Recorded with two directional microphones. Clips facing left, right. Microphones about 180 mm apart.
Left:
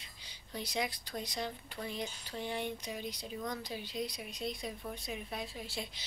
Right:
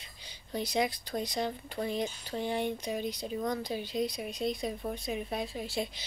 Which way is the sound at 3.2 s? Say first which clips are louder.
Right 7 dB; 45° right (ahead or behind).